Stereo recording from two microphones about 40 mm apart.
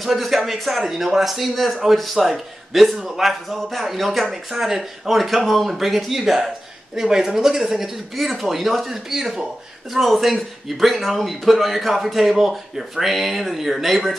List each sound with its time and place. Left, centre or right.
0.0 s speech: centre
4.5 s speech: centre
5.1 s speech: centre